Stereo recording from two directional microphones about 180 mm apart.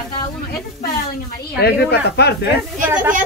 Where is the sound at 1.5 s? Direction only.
60° left (ahead or behind).